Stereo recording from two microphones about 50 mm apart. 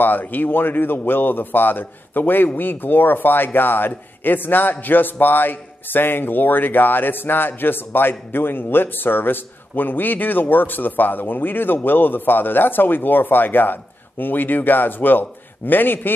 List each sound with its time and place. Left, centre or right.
0.0 s speech: left